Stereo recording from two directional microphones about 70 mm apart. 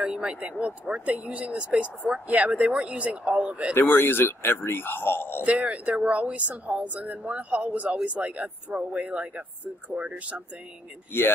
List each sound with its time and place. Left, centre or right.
0.0 s speech: centre
3.7 s a man's voice: left
5.4 s speech: right
11.1 s a man's voice: left